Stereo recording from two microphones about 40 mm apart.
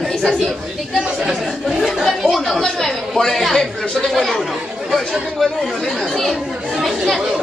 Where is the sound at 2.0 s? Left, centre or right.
Centre.